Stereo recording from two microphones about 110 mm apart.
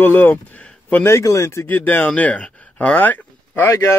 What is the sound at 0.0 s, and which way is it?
Speech, 20° left (ahead or behind).